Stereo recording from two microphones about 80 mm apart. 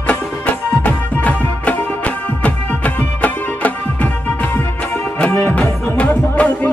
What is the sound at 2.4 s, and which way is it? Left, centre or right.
Music, centre.